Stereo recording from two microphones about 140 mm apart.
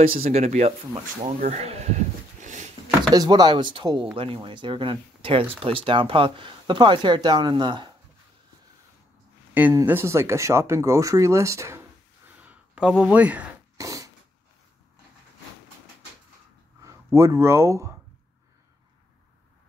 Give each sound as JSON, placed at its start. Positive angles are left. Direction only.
{"t": 0.3, "sound": "speech", "side_deg": -50}
{"t": 3.1, "sound": "speech", "side_deg": -30}
{"t": 9.5, "sound": "speech", "side_deg": -10}
{"t": 12.4, "sound": "a sound", "side_deg": -10}
{"t": 13.7, "sound": "a sound", "side_deg": -25}
{"t": 16.8, "sound": "speech", "side_deg": -20}